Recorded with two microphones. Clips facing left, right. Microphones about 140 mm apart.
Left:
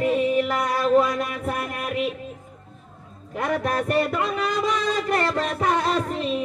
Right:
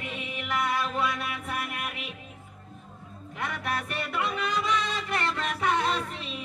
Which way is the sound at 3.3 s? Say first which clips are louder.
Left 8 dB; 40° left (ahead or behind).